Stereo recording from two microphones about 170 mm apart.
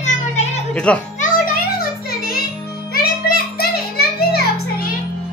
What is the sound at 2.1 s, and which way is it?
Music, 60° left (ahead or behind).